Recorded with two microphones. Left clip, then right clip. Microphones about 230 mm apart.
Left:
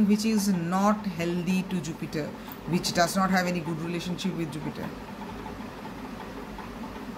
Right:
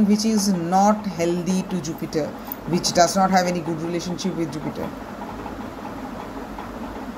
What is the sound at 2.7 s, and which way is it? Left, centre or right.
Speech, centre.